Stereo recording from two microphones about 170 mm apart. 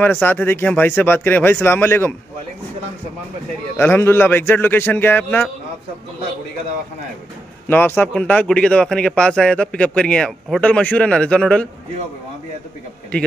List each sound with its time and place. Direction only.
0.0 s a man's voice: 10° left (ahead or behind)
3.7 s a man's voice: 15° left (ahead or behind)
7.6 s a man's voice: 10° left (ahead or behind)